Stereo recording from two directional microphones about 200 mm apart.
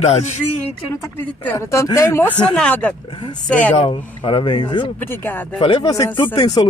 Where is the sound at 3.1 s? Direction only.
25° left (ahead or behind).